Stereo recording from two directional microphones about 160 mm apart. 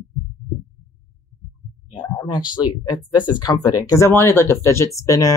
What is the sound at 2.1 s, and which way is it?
Speech, 25° left (ahead or behind).